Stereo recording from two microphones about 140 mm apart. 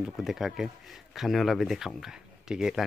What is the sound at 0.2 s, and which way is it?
Speech, centre (ahead or behind).